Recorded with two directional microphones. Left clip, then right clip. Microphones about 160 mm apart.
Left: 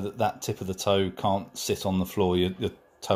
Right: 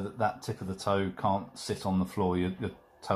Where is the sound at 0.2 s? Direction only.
60° left (ahead or behind).